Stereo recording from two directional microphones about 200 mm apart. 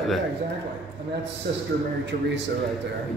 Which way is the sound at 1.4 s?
60° right (ahead or behind).